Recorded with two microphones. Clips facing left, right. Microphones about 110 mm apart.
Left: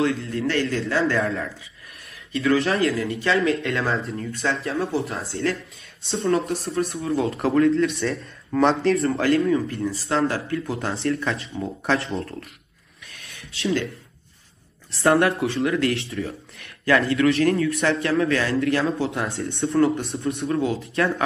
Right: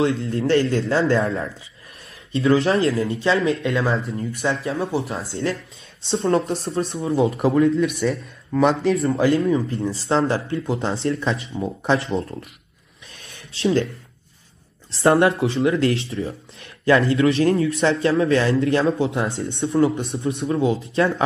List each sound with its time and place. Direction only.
0.0 s speech: 30° right (ahead or behind)
3.9 s speech: centre (ahead or behind)
4.3 s speech: 25° right (ahead or behind)
7.5 s speech: 5° right (ahead or behind)
9.5 s speech: 30° right (ahead or behind)
13.1 s a sound: 30° right (ahead or behind)
14.9 s speech: 25° right (ahead or behind)